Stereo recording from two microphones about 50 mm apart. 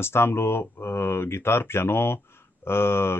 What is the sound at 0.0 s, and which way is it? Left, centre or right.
Speech, left.